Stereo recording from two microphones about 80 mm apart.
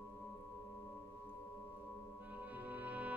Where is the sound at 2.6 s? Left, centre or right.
Right.